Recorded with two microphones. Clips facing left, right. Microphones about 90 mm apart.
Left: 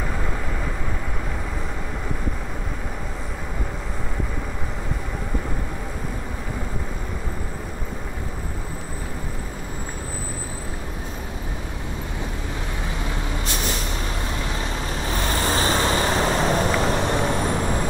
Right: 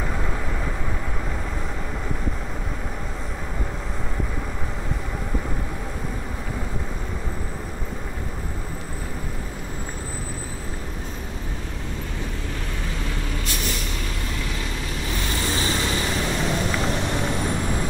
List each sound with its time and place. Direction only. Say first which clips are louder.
13.5 s vehicle: left 3 dB; 30° left (ahead or behind)
15.0 s vehicle: left 4 dB; 40° left (ahead or behind)